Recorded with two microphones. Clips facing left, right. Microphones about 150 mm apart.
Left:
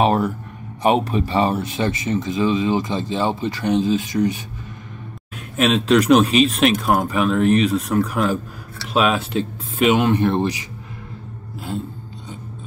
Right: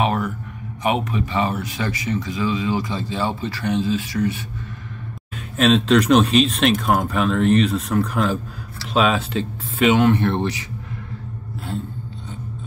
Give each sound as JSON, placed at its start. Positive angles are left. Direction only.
{"t": 0.0, "sound": "a sound", "side_deg": 35}
{"t": 0.8, "sound": "speech", "side_deg": 35}
{"t": 5.6, "sound": "speech", "side_deg": 10}